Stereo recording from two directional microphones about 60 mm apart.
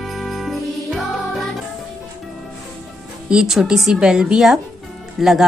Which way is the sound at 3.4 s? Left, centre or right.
Centre.